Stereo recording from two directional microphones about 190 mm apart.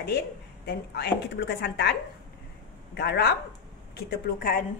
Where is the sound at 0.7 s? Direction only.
60° left (ahead or behind).